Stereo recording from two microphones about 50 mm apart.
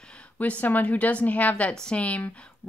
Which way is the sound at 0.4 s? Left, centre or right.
Left.